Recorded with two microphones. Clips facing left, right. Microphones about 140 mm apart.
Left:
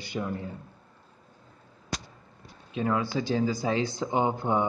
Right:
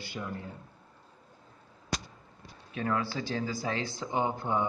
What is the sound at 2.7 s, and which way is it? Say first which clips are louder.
Speech: left 4 dB; 20° left (ahead or behind).